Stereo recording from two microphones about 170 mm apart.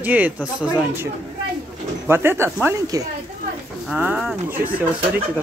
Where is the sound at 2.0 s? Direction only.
15° right (ahead or behind).